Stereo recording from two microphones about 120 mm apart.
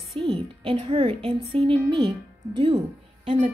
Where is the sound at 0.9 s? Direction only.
50° right (ahead or behind).